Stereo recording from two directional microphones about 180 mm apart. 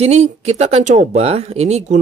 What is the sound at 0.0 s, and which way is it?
Speech, 35° right (ahead or behind).